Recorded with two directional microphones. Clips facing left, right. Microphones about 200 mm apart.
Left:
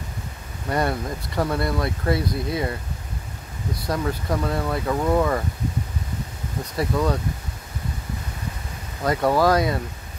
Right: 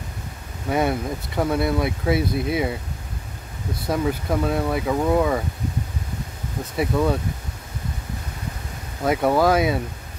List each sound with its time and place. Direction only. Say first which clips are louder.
0.7 s speech: right 2 dB; 5° right (ahead or behind)
2.1 s speech: right 3 dB; 25° right (ahead or behind)
3.9 s speech: right 3 dB; 5° right (ahead or behind)
6.8 s speech: right 2 dB; 10° right (ahead or behind)
9.0 s speech: right 1 dB; 5° right (ahead or behind)